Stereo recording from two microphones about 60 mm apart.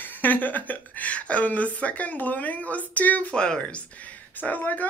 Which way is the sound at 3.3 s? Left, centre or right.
Centre.